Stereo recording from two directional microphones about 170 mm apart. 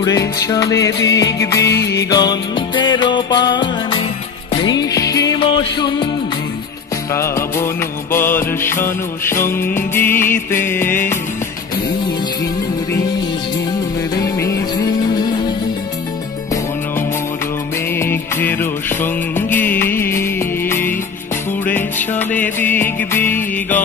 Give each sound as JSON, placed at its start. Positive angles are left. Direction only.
{"t": 0.0, "sound": "music", "side_deg": 20}
{"t": 5.4, "sound": "music", "side_deg": 35}
{"t": 7.2, "sound": "music", "side_deg": 15}
{"t": 14.1, "sound": "music", "side_deg": 20}
{"t": 17.9, "sound": "music", "side_deg": 15}